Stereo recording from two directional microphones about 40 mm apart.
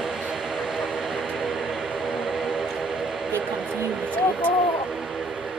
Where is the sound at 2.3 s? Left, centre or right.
Centre.